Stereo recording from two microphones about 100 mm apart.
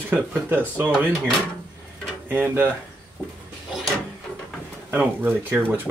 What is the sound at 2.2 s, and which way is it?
Speech, 20° right (ahead or behind).